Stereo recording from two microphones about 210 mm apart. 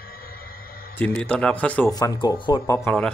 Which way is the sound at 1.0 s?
5° left (ahead or behind).